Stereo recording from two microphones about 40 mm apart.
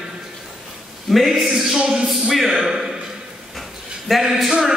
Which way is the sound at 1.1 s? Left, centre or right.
Centre.